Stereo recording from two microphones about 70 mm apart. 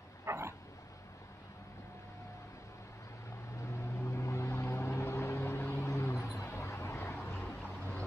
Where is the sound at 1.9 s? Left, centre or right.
Left.